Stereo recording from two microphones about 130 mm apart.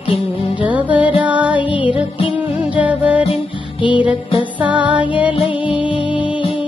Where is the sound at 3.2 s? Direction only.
50° left (ahead or behind).